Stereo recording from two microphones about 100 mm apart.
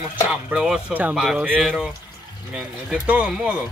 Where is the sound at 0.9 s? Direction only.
15° right (ahead or behind).